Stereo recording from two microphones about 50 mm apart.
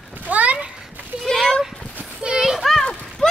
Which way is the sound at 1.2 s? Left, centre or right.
Centre.